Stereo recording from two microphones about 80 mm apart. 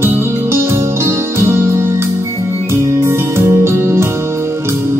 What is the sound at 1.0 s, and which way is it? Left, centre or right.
Music, right.